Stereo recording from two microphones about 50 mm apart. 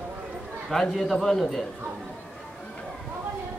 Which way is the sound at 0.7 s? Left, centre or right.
Centre.